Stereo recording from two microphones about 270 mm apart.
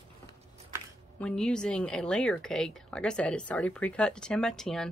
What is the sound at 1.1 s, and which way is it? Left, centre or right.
Speech, centre.